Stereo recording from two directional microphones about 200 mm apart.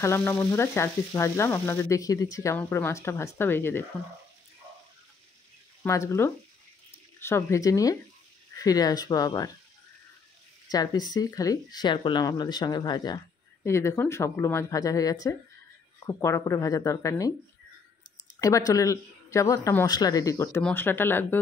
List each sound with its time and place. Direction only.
0.0 s sizzle: 10° left (ahead or behind)
5.8 s speech: 15° left (ahead or behind)
7.2 s sizzle: 10° left (ahead or behind)
8.5 s speech: 20° left (ahead or behind)
10.7 s speech: 20° left (ahead or behind)
13.7 s sizzle: 15° left (ahead or behind)
18.4 s sizzle: 15° left (ahead or behind)